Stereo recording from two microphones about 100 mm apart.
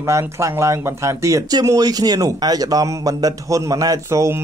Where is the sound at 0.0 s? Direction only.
30° right (ahead or behind).